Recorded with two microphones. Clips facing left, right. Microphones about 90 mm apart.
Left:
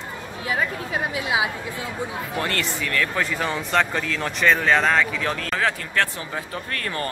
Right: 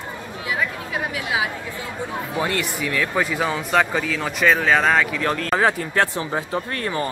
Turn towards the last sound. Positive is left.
turn(degrees=-25)  # may be behind; listen again after turning